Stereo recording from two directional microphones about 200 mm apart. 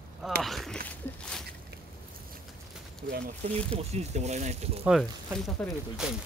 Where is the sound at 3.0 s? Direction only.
45° right (ahead or behind).